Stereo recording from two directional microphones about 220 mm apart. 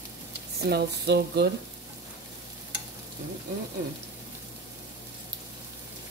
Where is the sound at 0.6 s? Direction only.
50° right (ahead or behind).